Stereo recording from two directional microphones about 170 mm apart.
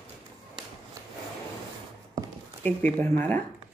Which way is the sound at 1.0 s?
20° right (ahead or behind).